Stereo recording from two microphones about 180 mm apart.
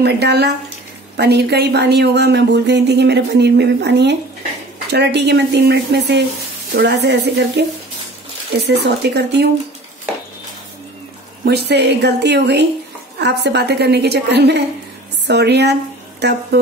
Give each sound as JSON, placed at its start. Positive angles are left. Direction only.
{"t": 0.0, "sound": "speech", "side_deg": -70}
{"t": 11.4, "sound": "a woman's voice", "side_deg": -65}